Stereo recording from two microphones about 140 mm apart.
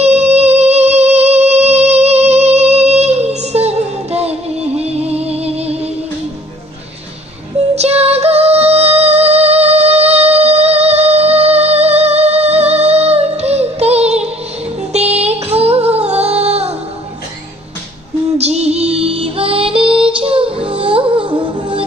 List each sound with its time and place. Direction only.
0.0 s music: 50° right (ahead or behind)
7.7 s music: 50° right (ahead or behind)
18.4 s music: 50° right (ahead or behind)